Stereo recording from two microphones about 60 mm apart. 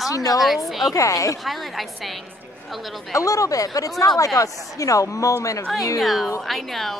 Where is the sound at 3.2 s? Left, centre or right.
Left.